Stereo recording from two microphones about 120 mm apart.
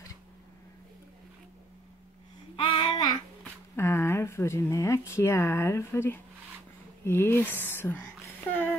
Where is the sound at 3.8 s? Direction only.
20° left (ahead or behind).